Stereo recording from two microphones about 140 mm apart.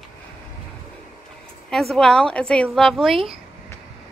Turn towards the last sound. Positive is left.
turn(degrees=0)  # may be behind; listen again after turning